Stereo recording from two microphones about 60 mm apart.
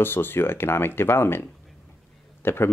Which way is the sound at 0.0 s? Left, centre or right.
Left.